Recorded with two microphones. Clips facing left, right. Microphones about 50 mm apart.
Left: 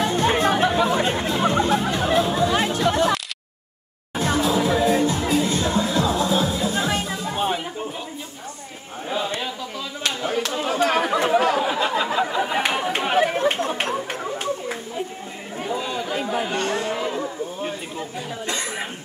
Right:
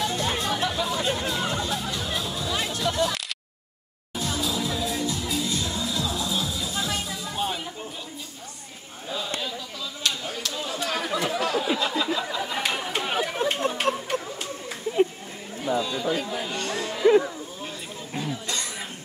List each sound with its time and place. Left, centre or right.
0.0 s chatter: left
4.1 s music: left
10.0 s chatter: left
15.7 s a sound: left
18.5 s cough: left